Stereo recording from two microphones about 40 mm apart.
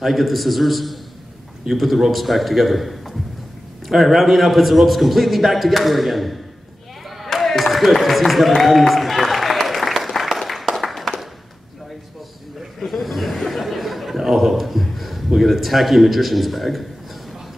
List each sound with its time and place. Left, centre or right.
0.0 s a man's voice: centre
8.6 s applause: centre
12.7 s chuckle: centre